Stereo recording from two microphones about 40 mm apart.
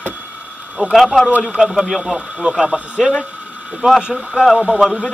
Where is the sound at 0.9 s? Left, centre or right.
Centre.